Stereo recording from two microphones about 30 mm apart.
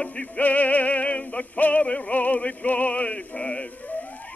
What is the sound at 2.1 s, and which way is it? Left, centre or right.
Music, left.